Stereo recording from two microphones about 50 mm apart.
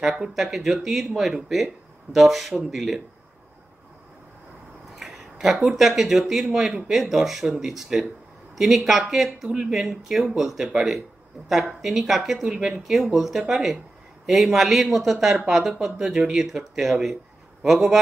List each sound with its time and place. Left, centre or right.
0.2 s speech: centre
5.1 s speech: centre
16.1 s a man's voice: centre